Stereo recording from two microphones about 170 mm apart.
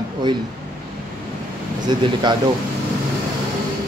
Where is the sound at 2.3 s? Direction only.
25° right (ahead or behind).